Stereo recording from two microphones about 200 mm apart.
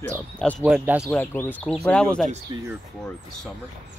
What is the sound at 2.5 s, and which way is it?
Speech, 25° right (ahead or behind).